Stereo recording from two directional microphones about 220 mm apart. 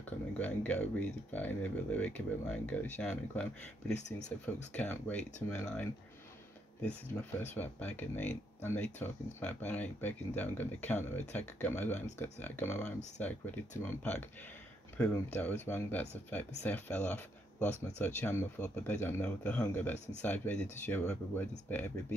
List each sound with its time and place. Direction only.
0.4 s speech: 5° left (ahead or behind)
4.5 s speech: 5° left (ahead or behind)